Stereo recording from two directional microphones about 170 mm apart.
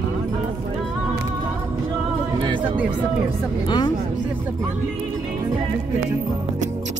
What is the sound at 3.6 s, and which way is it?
Speech, 25° left (ahead or behind).